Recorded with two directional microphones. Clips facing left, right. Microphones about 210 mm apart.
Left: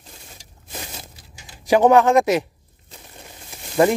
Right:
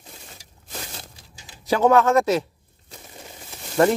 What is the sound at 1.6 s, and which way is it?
Speech, 15° left (ahead or behind).